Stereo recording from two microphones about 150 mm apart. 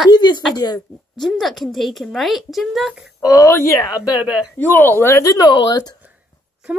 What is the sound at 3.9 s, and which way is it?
Speech, 10° right (ahead or behind).